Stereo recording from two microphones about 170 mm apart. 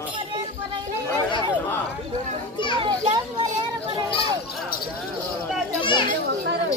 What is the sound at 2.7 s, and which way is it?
Speech, 30° right (ahead or behind).